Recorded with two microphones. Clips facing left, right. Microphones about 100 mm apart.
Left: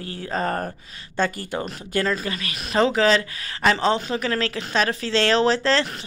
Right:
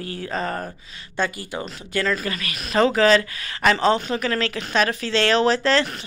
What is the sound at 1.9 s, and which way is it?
Speech, 30° left (ahead or behind).